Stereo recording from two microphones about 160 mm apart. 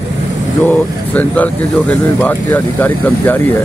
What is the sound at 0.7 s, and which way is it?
Speech, 10° left (ahead or behind).